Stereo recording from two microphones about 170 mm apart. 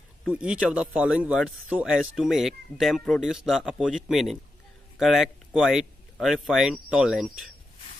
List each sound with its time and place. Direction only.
0.3 s speech: 5° right (ahead or behind)